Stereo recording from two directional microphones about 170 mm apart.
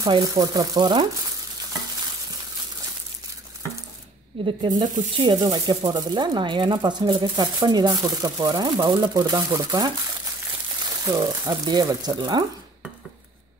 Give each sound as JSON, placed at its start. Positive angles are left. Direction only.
{"t": 0.0, "sound": "speech", "side_deg": -20}
{"t": 4.5, "sound": "speech", "side_deg": -30}